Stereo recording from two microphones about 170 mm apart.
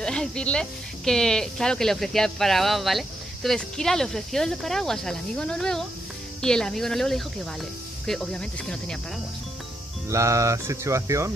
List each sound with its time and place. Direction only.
0.0 s speech: 5° left (ahead or behind)
10.0 s speech: 20° right (ahead or behind)